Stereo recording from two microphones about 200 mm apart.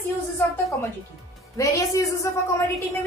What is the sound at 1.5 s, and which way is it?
Speech, 15° left (ahead or behind).